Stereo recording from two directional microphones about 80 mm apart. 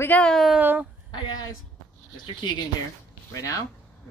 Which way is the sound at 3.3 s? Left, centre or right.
Left.